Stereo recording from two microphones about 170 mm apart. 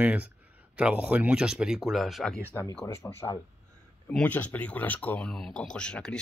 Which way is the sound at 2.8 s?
15° left (ahead or behind).